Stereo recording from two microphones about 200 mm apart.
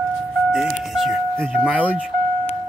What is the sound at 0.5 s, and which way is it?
Doorbell, centre (ahead or behind).